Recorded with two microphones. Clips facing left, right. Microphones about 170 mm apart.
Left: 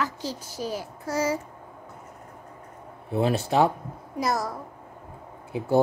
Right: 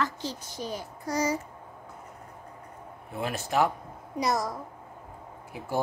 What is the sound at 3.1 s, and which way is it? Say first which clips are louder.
Speech: left 6 dB; 30° left (ahead or behind).